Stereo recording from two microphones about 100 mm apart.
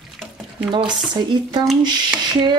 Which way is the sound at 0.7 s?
50° right (ahead or behind).